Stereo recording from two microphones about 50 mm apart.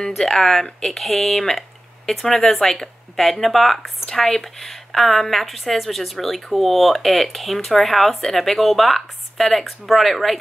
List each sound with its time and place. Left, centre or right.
0.2 s speech: centre